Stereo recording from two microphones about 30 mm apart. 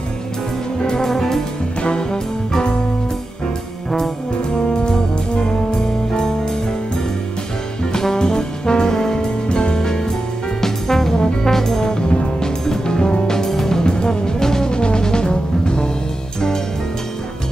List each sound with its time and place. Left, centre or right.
0.8 s music: centre
1.8 s brass instrument: left
4.6 s music: left
7.9 s brass instrument: centre
8.8 s music: centre
10.6 s brass instrument: centre
11.1 s brass instrument: left
11.5 s brass instrument: centre
12.4 s music: left
14.7 s music: left